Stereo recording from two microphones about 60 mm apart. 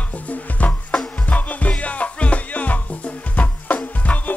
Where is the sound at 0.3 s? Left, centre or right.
Left.